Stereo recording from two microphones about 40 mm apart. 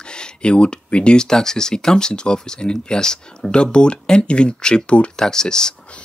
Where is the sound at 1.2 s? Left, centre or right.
Centre.